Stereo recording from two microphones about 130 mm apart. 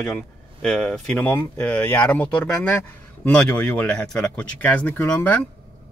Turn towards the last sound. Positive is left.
turn(degrees=10)  # may be behind; listen again after turning